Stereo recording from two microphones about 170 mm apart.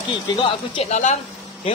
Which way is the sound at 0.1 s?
30° left (ahead or behind).